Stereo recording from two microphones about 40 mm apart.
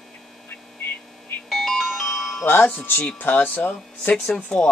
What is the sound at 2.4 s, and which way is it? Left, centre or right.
Speech, left.